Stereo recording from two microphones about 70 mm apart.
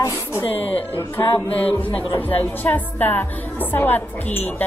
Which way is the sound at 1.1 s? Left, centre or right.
Left.